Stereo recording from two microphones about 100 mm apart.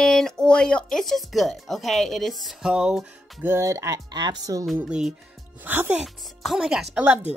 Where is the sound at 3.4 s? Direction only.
30° right (ahead or behind).